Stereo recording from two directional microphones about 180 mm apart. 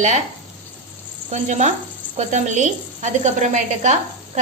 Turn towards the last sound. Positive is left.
turn(degrees=-40)  # may be behind; listen again after turning